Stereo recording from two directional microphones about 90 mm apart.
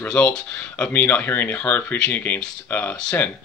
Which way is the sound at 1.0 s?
20° left (ahead or behind).